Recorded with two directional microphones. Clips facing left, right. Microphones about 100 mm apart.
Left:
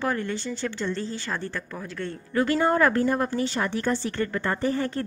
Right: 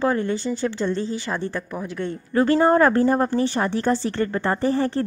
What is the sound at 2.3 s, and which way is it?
Speech, 35° right (ahead or behind).